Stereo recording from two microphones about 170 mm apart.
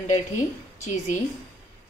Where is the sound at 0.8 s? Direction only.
45° left (ahead or behind).